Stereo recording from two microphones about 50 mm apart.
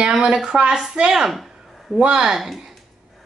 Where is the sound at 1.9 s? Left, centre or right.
Centre.